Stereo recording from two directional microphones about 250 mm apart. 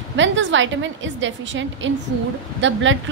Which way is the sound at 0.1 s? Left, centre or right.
Right.